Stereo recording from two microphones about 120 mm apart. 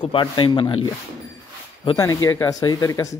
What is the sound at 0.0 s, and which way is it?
Speech, 45° left (ahead or behind).